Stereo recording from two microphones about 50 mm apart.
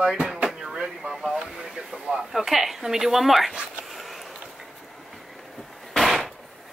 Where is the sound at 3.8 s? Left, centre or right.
Centre.